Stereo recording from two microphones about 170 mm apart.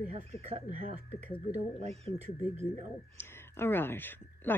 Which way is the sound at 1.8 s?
40° right (ahead or behind).